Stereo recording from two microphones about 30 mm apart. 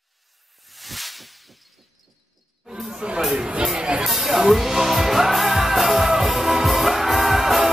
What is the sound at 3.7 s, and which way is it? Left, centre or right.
Music, right.